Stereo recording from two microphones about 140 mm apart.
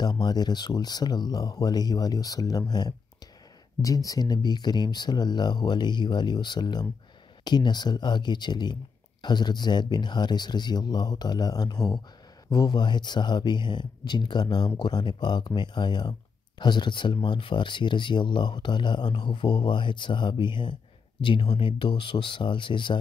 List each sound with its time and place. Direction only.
0.0 s speech: 30° left (ahead or behind)
3.8 s speech: 25° left (ahead or behind)